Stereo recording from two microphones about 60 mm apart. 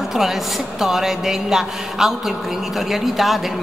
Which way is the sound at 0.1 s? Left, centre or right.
Centre.